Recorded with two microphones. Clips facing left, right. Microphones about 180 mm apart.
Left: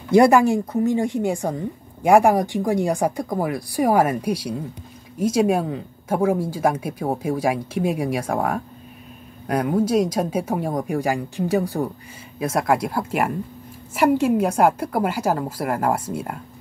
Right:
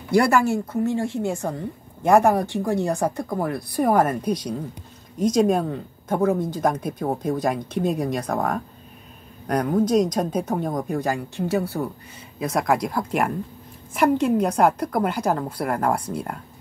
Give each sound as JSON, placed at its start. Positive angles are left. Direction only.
{"t": 0.1, "sound": "speech", "side_deg": 20}